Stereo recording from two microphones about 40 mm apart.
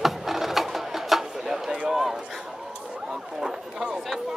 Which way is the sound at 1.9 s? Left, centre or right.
Centre.